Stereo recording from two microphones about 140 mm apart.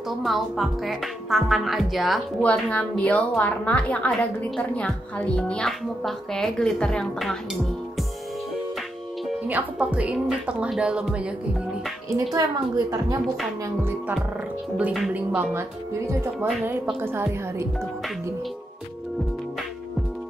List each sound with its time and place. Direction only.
0.2 s a woman's voice: centre (ahead or behind)
9.5 s speech: 10° right (ahead or behind)
12.3 s a woman's voice: 25° right (ahead or behind)
14.8 s speech: 10° right (ahead or behind)